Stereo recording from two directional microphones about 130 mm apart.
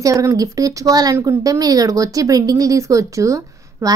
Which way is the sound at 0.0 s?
25° right (ahead or behind).